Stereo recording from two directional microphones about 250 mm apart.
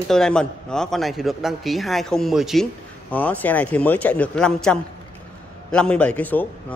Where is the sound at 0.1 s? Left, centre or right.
Centre.